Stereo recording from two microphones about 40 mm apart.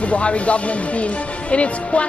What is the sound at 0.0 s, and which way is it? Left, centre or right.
Speech, left.